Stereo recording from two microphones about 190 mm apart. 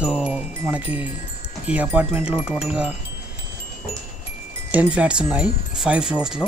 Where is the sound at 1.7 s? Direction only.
10° right (ahead or behind).